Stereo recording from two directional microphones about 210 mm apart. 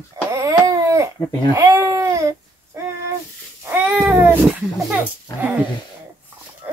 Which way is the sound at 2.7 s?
10° right (ahead or behind).